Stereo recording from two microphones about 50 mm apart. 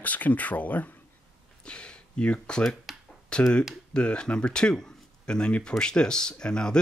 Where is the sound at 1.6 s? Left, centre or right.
Centre.